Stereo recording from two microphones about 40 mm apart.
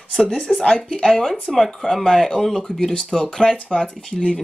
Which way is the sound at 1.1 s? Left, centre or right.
Centre.